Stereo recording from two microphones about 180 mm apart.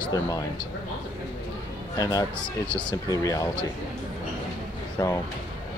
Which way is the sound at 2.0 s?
20° left (ahead or behind).